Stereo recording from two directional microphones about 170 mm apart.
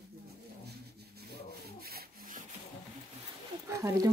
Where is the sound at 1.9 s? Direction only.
65° right (ahead or behind).